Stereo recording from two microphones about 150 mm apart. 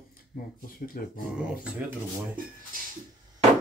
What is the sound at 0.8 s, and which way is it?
Speech, 60° left (ahead or behind).